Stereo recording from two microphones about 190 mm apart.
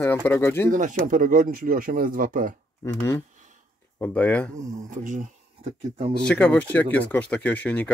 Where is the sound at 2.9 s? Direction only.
15° left (ahead or behind).